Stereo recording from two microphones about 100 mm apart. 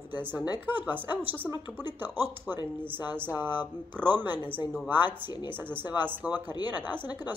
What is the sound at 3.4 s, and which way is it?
Speech, 45° left (ahead or behind).